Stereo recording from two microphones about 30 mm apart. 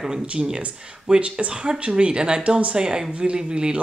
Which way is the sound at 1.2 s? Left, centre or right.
Right.